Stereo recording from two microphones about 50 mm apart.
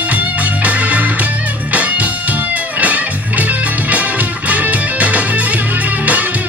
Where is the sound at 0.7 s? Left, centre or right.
Right.